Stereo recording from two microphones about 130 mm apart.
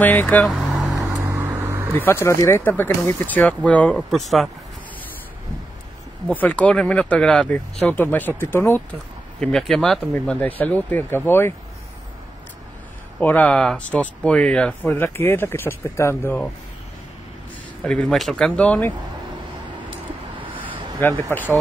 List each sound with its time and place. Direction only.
0.0 s speech: 15° left (ahead or behind)
0.7 s vehicle: centre (ahead or behind)
1.3 s vehicle: 15° right (ahead or behind)
2.0 s speech: 20° left (ahead or behind); by 4.5 s centre (ahead or behind)
6.2 s speech: 10° left (ahead or behind)
9.4 s speech: centre (ahead or behind)
10.1 s speech: 10° left (ahead or behind)
13.2 s speech: 10° left (ahead or behind)
17.8 s speech: 5° left (ahead or behind)
20.4 s a sound: 40° right (ahead or behind)
21.3 s speech: 15° left (ahead or behind)